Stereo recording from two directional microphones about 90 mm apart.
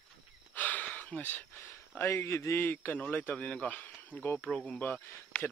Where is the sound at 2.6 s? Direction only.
20° left (ahead or behind).